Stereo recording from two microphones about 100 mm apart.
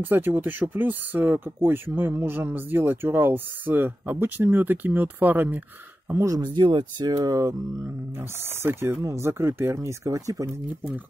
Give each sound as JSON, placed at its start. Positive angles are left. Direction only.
{"t": 0.0, "sound": "speech", "side_deg": -20}
{"t": 6.3, "sound": "speech", "side_deg": -50}
{"t": 8.2, "sound": "speech", "side_deg": -20}
{"t": 10.7, "sound": "speech", "side_deg": -15}